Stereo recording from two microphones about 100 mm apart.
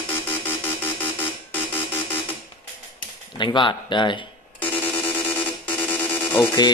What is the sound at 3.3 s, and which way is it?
Speech, 55° left (ahead or behind).